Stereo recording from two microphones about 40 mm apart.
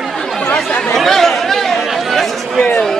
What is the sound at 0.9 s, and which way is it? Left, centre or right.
Chatter, centre.